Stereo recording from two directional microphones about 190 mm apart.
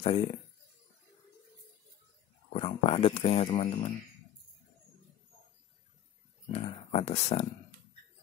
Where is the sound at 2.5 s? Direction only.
30° left (ahead or behind).